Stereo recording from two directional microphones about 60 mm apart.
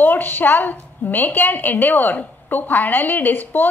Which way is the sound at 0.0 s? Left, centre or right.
Left.